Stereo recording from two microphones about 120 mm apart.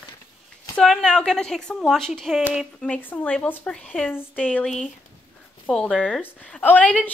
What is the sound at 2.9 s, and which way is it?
A woman's voice, 15° left (ahead or behind).